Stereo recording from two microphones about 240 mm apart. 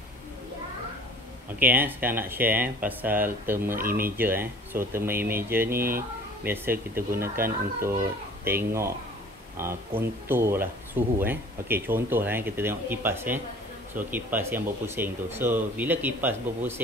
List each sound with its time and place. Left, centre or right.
1.6 s speech: centre
3.7 s speech: right
4.2 s speech: centre
5.7 s speech: right
6.4 s speech: centre